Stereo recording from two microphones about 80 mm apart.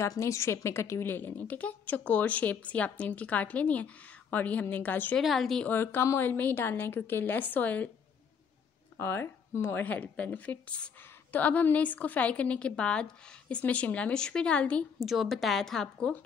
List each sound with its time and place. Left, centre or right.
0.1 s a woman's voice: left
5.1 s a woman's voice: centre
5.7 s a woman's voice: left
8.9 s a woman's voice: left
9.8 s a woman's voice: centre
15.0 s a woman's voice: centre